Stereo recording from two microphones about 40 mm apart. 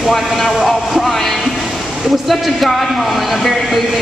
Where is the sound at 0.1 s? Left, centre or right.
Centre.